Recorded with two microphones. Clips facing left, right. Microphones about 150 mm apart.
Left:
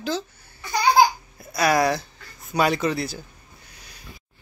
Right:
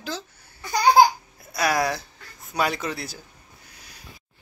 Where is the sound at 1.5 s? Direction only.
Centre (ahead or behind).